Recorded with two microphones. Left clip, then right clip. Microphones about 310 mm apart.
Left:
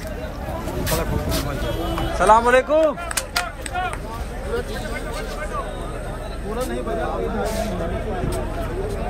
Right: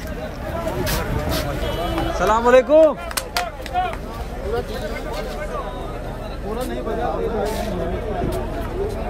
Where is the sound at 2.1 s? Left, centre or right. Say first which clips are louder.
Even; centre.